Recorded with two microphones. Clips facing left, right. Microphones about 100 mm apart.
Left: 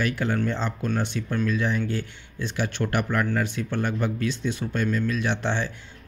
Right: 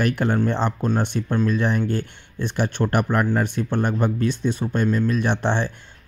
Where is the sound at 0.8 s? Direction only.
35° right (ahead or behind).